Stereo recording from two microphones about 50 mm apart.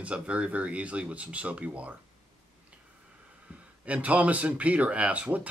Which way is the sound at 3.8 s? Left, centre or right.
Right.